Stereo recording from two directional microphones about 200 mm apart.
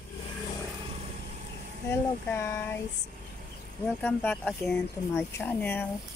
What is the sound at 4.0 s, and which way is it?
Speech, 5° left (ahead or behind).